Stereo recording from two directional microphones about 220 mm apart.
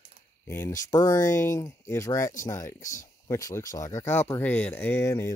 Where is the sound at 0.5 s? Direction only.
10° left (ahead or behind).